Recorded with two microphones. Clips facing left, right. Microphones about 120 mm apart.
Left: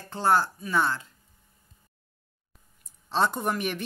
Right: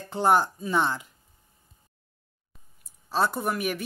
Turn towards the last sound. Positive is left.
turn(degrees=-5)  # may be behind; listen again after turning